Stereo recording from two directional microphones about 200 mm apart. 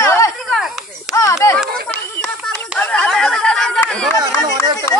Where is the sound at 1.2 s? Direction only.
15° left (ahead or behind).